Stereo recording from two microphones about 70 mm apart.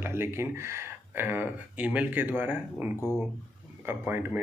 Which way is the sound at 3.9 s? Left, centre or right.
Right.